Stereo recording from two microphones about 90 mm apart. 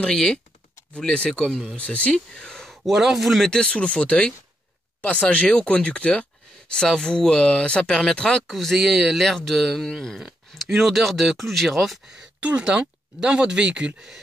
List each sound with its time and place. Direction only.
0.0 s speech: 5° left (ahead or behind)
12.4 s speech: 15° right (ahead or behind)